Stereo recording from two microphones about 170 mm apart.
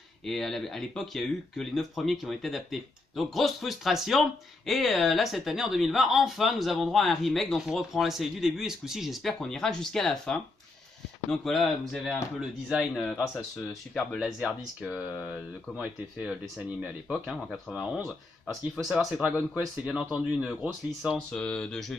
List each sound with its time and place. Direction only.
0.2 s speech: centre (ahead or behind)